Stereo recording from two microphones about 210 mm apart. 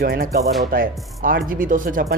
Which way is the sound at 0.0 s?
45° right (ahead or behind).